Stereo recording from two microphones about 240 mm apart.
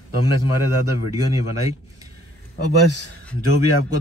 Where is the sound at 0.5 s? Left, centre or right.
Left.